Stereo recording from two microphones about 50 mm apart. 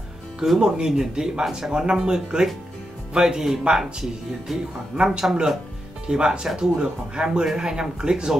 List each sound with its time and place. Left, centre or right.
0.6 s speech: centre
4.9 s speech: centre